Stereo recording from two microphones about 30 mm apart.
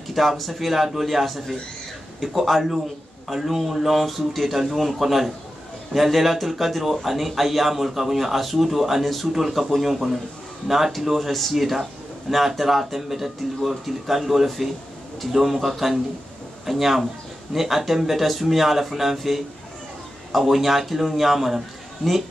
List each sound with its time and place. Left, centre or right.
0.1 s a man's voice: centre